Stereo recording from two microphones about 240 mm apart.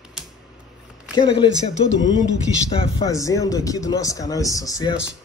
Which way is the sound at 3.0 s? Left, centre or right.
Centre.